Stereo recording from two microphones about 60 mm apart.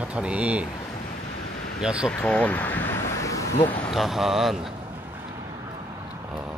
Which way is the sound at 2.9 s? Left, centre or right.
Left.